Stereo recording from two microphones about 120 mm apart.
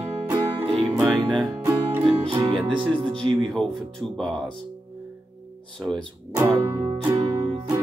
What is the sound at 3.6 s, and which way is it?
Music, 5° left (ahead or behind).